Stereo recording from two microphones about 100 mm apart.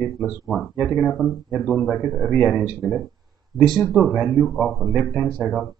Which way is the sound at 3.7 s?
Centre (ahead or behind).